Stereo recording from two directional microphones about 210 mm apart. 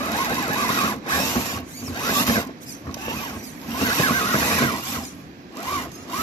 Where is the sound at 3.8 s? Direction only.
20° left (ahead or behind).